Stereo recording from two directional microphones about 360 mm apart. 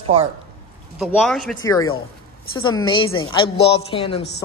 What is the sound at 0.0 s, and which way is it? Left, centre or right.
Speech, centre.